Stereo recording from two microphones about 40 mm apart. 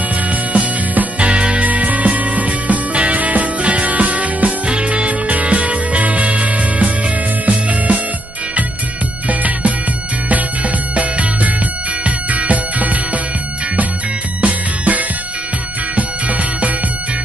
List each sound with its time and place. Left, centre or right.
0.3 s music: right
1.7 s music: right
9.3 s music: right
14.4 s music: right